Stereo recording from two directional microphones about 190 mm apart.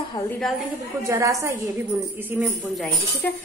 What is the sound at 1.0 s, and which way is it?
Speech, 15° right (ahead or behind).